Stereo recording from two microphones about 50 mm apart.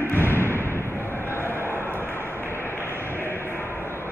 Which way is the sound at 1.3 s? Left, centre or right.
Left.